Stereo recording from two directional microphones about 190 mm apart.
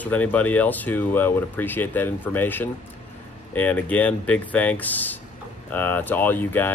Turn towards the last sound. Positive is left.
turn(degrees=10)  # may be behind; listen again after turning